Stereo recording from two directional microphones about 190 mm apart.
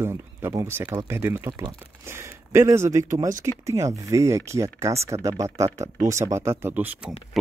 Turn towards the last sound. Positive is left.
turn(degrees=-10)  # may be behind; listen again after turning